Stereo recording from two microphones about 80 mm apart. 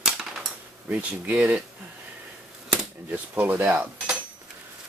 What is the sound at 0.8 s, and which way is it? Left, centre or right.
Speech, right.